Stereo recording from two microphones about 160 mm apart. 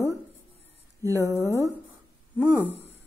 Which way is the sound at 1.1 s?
20° left (ahead or behind).